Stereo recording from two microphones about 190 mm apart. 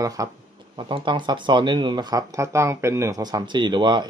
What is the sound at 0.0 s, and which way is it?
Speech, 15° right (ahead or behind).